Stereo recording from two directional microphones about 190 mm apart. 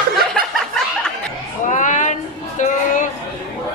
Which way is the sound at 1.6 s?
40° left (ahead or behind).